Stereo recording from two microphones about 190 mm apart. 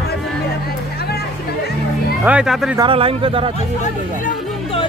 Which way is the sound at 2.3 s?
5° right (ahead or behind).